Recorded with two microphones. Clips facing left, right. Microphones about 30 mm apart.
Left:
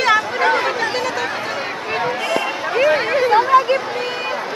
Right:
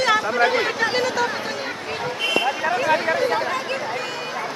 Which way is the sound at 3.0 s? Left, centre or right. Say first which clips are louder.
Left 6 dB; left.